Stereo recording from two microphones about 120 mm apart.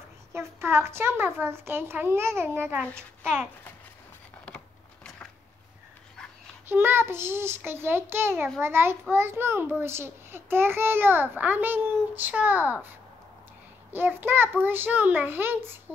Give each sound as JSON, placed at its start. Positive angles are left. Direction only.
{"t": 0.3, "sound": "a woman's voice", "side_deg": -20}
{"t": 6.7, "sound": "a woman's voice", "side_deg": -20}
{"t": 13.9, "sound": "a child's voice", "side_deg": -15}